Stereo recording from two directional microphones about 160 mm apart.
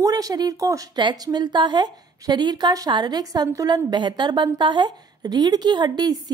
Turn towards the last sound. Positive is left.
turn(degrees=-25)  # may be behind; listen again after turning